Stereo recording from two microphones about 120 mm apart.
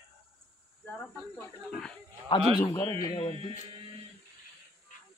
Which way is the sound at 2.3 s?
35° left (ahead or behind).